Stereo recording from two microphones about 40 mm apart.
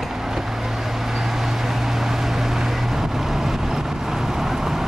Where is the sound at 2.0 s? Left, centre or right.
Centre.